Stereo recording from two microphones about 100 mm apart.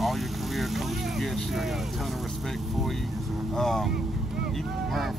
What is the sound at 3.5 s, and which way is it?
Speech, 5° left (ahead or behind).